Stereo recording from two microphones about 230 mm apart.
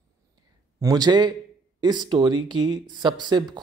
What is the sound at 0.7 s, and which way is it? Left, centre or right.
Speech, centre.